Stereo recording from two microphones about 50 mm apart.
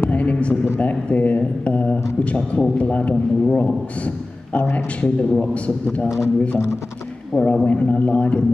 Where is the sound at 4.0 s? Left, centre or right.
Left.